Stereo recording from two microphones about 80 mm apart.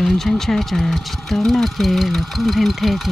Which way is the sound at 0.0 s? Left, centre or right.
Centre.